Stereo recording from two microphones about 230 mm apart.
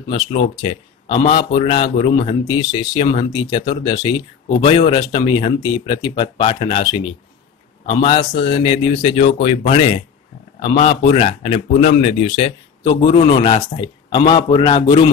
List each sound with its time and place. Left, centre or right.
0.1 s speech: left